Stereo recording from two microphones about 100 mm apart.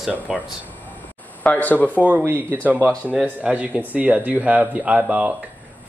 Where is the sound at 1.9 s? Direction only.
15° right (ahead or behind).